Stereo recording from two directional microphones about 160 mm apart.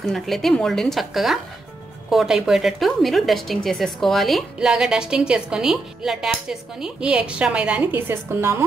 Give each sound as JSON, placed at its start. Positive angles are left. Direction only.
{"t": 0.0, "sound": "a woman's voice", "side_deg": 0}